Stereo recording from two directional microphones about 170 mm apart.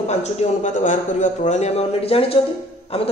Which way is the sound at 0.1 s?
40° left (ahead or behind).